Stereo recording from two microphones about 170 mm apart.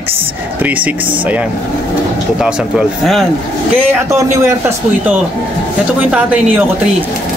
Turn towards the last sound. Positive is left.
turn(degrees=-10)  # may be behind; listen again after turning